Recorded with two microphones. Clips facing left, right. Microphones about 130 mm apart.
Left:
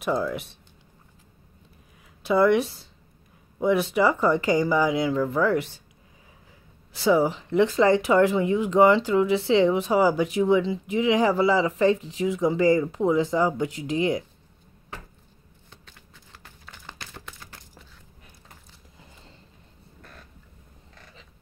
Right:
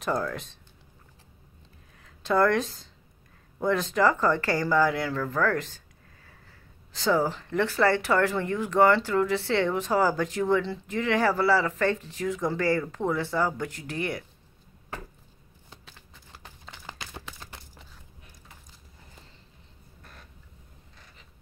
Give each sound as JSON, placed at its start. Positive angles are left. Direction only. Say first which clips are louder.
{"t": 0.0, "sound": "speech", "louder": "left 3 dB", "side_deg": 5}
{"t": 2.2, "sound": "speech", "louder": "left 3 dB", "side_deg": 10}
{"t": 6.9, "sound": "speech", "louder": "left 4 dB", "side_deg": 10}
{"t": 15.7, "sound": "a sound", "louder": "right 1 dB", "side_deg": -5}